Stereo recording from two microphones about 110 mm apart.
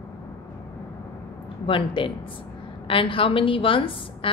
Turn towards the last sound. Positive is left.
turn(degrees=50)  # may be behind; listen again after turning